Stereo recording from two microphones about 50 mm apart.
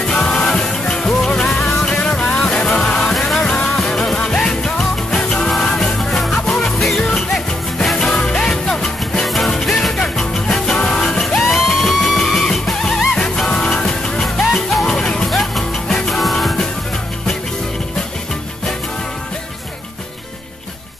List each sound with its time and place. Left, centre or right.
0.0 s music: centre
3.4 s music: centre
11.4 s music: centre
12.2 s music: centre
14.2 s music: centre
15.2 s music: centre